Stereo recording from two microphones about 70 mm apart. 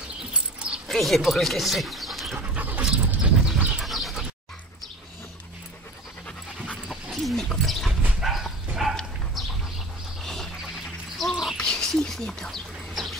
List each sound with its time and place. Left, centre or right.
0.3 s dog: centre
0.8 s speech: centre
2.3 s dog: centre
6.9 s dog: centre
10.2 s music: centre
11.5 s bird: centre